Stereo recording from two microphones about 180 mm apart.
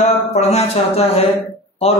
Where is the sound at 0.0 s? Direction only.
35° left (ahead or behind).